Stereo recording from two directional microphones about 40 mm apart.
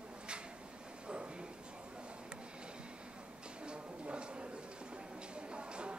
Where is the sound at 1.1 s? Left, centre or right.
Right.